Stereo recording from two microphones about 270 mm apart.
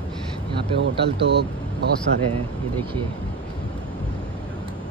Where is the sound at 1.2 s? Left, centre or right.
Right.